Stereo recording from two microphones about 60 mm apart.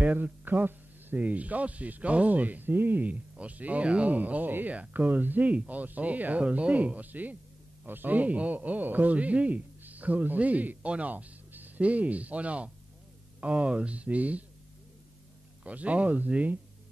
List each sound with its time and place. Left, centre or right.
0.0 s a man's voice: right
15.6 s a man's voice: right